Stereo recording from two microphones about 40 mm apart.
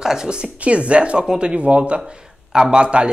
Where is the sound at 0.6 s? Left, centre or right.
Right.